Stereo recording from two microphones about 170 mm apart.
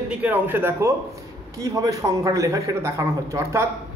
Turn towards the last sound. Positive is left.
turn(degrees=-15)  # may be behind; listen again after turning